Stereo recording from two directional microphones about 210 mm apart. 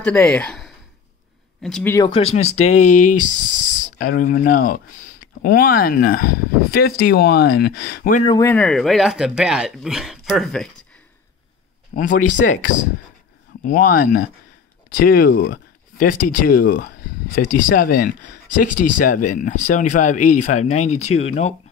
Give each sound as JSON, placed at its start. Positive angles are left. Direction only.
{"t": 0.0, "sound": "speech", "side_deg": 10}
{"t": 2.0, "sound": "speech", "side_deg": 25}
{"t": 8.3, "sound": "speech", "side_deg": 10}
{"t": 11.9, "sound": "speech", "side_deg": 40}
{"t": 13.7, "sound": "speech", "side_deg": 40}